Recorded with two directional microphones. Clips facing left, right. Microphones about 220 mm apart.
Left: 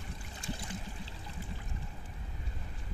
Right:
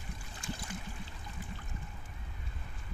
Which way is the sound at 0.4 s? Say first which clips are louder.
Left 1 dB; 30° left (ahead or behind).